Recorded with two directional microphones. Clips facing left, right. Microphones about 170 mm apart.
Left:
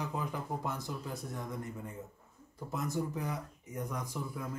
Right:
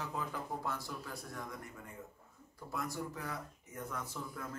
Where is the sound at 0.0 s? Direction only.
15° left (ahead or behind).